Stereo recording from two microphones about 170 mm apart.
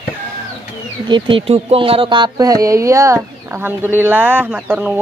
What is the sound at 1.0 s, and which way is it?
Speech, 25° right (ahead or behind).